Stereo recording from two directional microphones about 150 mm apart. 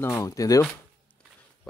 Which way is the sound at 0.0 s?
20° left (ahead or behind).